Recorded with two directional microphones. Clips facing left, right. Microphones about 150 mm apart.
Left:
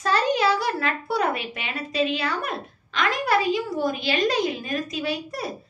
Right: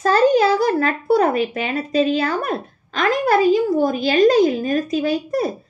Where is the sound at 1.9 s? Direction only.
45° right (ahead or behind).